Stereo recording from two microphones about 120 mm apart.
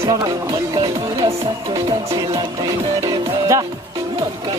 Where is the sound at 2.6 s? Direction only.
30° right (ahead or behind).